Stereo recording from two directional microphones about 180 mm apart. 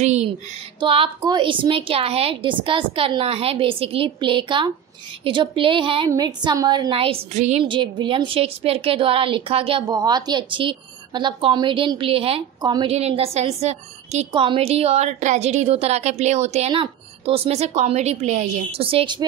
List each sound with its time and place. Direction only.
0.0 s a woman's voice: 40° right (ahead or behind)